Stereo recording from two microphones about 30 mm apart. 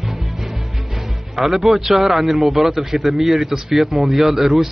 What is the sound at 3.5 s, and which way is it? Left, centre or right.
A man's voice, centre.